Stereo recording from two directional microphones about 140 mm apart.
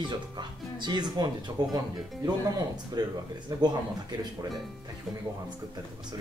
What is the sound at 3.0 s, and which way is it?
Speech, 30° right (ahead or behind).